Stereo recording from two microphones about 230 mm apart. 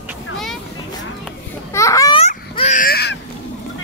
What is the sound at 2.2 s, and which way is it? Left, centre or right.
Baby cry, left.